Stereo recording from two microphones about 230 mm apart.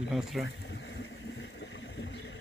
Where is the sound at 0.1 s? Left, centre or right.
Centre.